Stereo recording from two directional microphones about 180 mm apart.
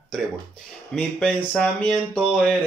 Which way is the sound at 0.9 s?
10° left (ahead or behind).